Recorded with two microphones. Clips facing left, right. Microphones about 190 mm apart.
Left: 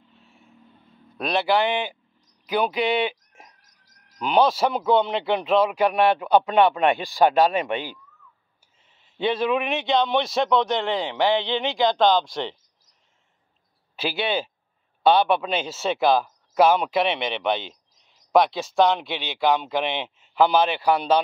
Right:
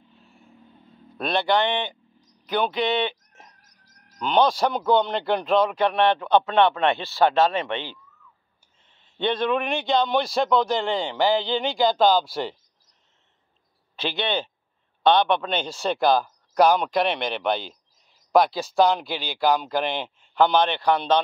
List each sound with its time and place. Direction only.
0.2 s vehicle: centre (ahead or behind)
1.1 s a man's voice: centre (ahead or behind)
2.4 s a sound: 5° left (ahead or behind)
4.2 s a man's voice: 5° left (ahead or behind)
13.9 s a man's voice: 5° left (ahead or behind)